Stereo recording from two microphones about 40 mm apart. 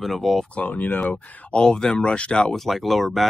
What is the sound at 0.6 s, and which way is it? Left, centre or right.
Speech, left.